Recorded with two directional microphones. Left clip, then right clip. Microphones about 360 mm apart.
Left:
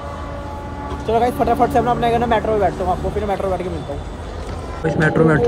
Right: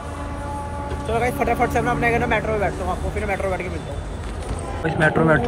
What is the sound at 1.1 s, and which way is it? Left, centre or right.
Speech, centre.